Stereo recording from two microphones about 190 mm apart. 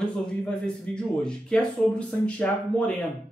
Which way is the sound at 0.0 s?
5° left (ahead or behind).